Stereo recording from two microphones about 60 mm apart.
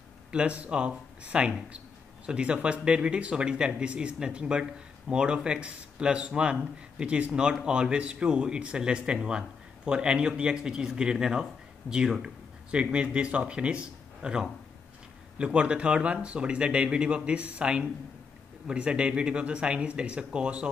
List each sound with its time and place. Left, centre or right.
0.3 s speech: centre